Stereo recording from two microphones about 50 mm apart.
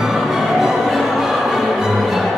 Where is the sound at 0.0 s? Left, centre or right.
Centre.